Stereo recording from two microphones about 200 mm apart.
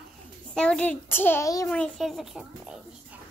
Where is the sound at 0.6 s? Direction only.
5° left (ahead or behind).